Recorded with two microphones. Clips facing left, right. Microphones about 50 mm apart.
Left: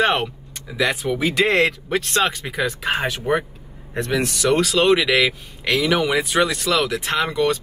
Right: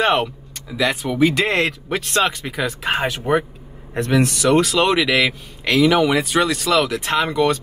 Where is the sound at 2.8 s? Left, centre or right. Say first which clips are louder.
Right 1 dB; right.